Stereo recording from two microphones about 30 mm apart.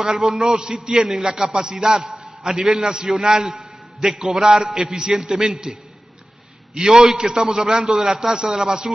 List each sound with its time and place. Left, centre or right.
0.0 s a man's voice: centre
0.6 s a man's voice: right
6.7 s a man's voice: centre